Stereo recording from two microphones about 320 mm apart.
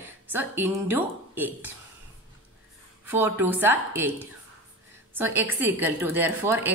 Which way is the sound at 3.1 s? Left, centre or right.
Centre.